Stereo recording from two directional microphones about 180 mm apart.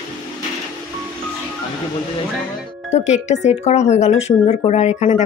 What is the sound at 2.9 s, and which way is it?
Speech, 40° left (ahead or behind).